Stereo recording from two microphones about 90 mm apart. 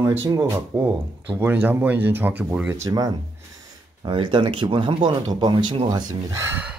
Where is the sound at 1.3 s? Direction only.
25° right (ahead or behind).